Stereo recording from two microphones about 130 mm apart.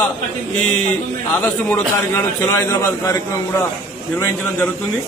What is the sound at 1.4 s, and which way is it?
A man's voice, 15° left (ahead or behind).